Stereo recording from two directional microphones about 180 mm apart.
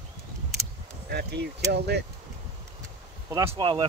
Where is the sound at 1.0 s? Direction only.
65° right (ahead or behind).